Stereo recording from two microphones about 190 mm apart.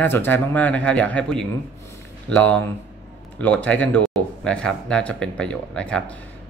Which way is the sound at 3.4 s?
5° left (ahead or behind).